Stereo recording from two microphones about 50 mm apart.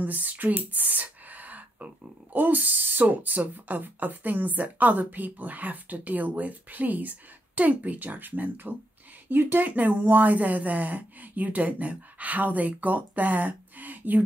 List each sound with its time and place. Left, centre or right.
0.0 s speech: right